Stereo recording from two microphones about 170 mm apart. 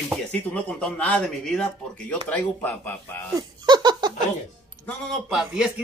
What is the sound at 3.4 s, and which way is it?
Laughter, 25° right (ahead or behind).